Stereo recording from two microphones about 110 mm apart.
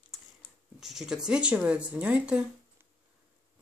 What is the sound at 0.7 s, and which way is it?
Speech, 5° right (ahead or behind).